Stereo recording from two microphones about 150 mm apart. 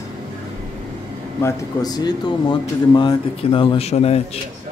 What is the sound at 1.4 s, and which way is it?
A man's voice, 20° left (ahead or behind).